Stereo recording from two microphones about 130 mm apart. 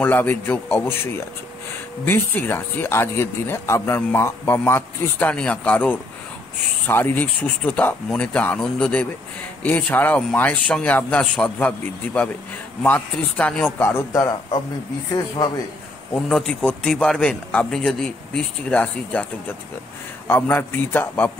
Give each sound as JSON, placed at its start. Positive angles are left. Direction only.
{"t": 0.0, "sound": "speech", "side_deg": 15}
{"t": 15.1, "sound": "speech", "side_deg": 30}
{"t": 16.2, "sound": "speech", "side_deg": 5}